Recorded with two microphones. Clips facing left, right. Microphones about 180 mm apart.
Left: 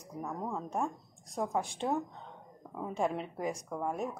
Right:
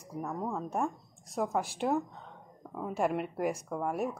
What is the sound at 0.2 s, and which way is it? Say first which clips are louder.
Speech: right 2 dB; 5° right (ahead or behind).